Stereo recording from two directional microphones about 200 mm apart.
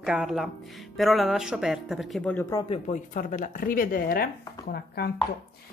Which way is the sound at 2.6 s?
35° left (ahead or behind).